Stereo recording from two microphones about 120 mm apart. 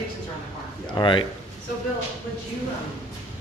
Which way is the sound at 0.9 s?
40° left (ahead or behind).